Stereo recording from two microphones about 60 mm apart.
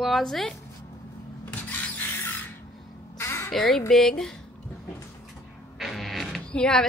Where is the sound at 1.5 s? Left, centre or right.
Left.